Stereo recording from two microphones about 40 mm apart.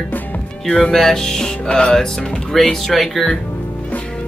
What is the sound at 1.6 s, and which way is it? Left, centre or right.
Music, left.